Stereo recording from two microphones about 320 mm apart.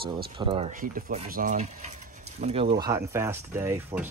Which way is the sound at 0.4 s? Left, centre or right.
Centre.